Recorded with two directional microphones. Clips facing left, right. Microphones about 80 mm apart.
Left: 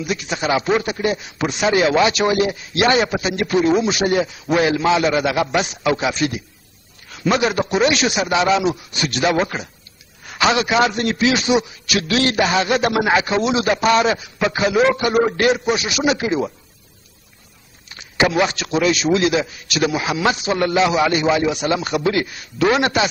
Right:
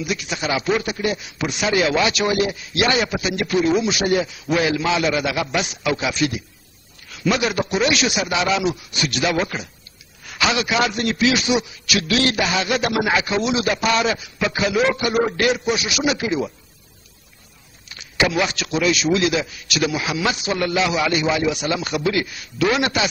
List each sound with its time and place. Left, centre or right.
0.0 s a man's voice: left
17.8 s a man's voice: left